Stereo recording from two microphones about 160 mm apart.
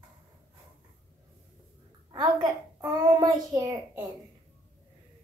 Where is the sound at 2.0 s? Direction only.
25° right (ahead or behind).